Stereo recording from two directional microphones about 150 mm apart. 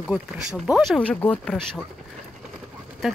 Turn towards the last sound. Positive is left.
turn(degrees=0)  # may be behind; listen again after turning